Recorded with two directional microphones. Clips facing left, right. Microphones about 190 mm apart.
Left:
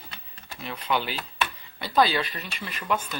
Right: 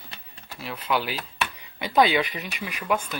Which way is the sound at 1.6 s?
15° right (ahead or behind).